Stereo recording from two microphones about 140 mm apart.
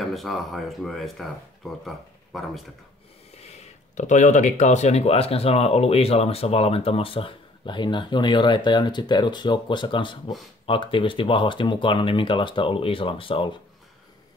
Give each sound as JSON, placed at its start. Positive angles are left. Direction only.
{"t": 0.0, "sound": "speech", "side_deg": 0}
{"t": 3.9, "sound": "speech", "side_deg": 60}